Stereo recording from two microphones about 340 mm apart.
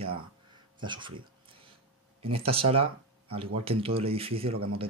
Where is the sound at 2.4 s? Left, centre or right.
Centre.